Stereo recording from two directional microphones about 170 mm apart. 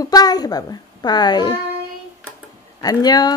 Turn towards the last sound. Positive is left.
turn(degrees=25)  # may be behind; listen again after turning